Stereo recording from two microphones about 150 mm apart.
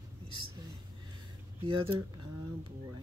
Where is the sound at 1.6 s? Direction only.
35° right (ahead or behind).